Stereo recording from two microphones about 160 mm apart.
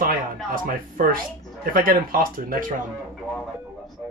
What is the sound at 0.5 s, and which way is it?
Speech, 60° right (ahead or behind).